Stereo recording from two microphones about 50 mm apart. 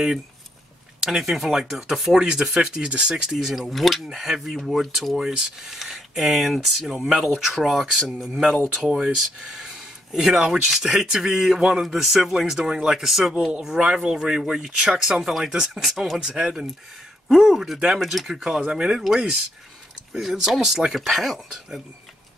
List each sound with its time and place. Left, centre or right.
1.0 s speech: centre
18.6 s speech: centre